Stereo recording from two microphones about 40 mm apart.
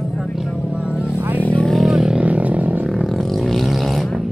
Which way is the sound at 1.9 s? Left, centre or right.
Centre.